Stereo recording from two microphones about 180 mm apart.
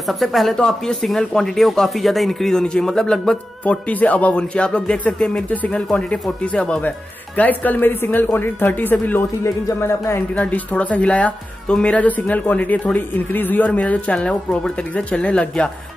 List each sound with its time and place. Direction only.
0.0 s speech: centre (ahead or behind)